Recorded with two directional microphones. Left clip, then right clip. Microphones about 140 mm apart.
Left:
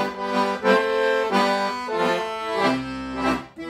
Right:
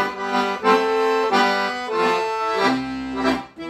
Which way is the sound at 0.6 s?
10° left (ahead or behind).